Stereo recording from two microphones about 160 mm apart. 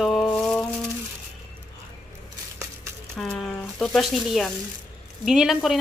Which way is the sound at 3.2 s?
5° left (ahead or behind).